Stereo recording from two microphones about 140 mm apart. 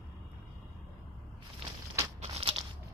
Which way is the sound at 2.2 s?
45° right (ahead or behind).